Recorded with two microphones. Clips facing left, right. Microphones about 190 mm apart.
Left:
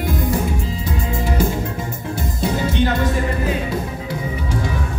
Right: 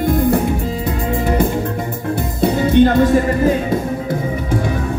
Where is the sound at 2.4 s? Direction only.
55° right (ahead or behind).